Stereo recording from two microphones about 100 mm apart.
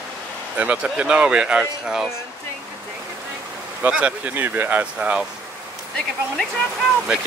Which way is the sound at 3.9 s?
10° right (ahead or behind).